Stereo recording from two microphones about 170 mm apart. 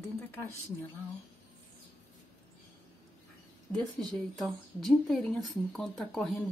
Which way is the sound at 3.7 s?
5° left (ahead or behind).